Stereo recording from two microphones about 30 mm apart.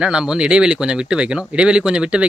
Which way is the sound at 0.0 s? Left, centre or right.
Right.